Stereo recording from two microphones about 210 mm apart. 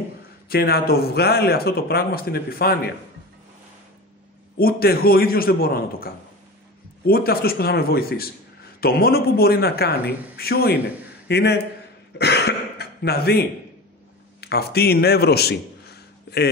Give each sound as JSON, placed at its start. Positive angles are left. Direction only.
{"t": 0.5, "sound": "a man's voice", "side_deg": 45}
{"t": 4.6, "sound": "a man's voice", "side_deg": 45}
{"t": 12.2, "sound": "throat clearing", "side_deg": 55}
{"t": 14.4, "sound": "a man's voice", "side_deg": 50}